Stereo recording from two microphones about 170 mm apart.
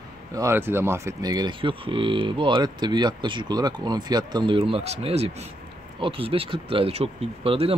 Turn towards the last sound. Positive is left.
turn(degrees=-35)  # may be behind; listen again after turning